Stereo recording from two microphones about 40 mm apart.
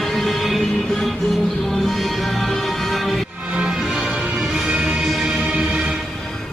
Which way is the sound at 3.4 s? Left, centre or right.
Right.